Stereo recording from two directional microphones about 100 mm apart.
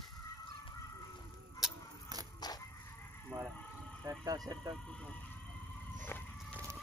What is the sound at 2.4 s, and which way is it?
Music, 45° left (ahead or behind).